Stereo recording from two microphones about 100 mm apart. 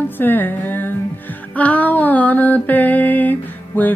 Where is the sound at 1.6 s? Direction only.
15° left (ahead or behind).